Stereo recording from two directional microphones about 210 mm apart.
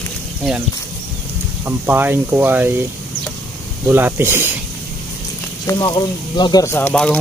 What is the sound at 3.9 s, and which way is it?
Speech, 10° right (ahead or behind).